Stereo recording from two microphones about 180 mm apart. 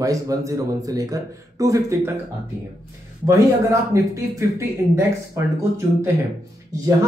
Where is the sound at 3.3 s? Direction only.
15° right (ahead or behind).